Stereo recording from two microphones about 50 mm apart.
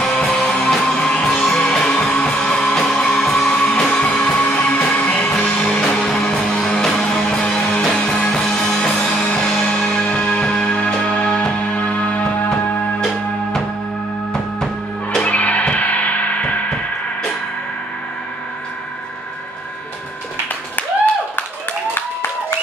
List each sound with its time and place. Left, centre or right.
0.0 s music: centre
9.2 s music: left
15.2 s music: left
20.7 s a sound: left